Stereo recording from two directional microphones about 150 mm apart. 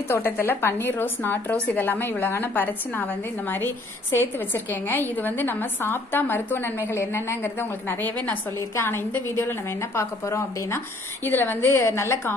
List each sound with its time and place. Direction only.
0.1 s a woman's voice: 15° left (ahead or behind)